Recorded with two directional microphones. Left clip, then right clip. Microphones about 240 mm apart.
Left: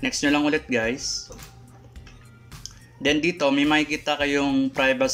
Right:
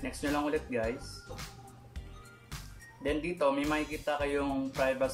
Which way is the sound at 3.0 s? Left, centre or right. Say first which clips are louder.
Left 9 dB; left.